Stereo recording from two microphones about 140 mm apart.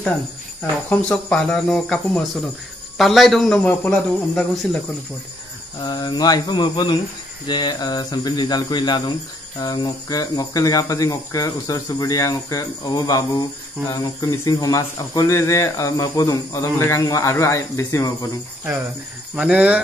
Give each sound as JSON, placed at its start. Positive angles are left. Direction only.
{"t": 0.6, "sound": "speech", "side_deg": 10}
{"t": 5.8, "sound": "speech", "side_deg": 30}
{"t": 19.3, "sound": "speech", "side_deg": -5}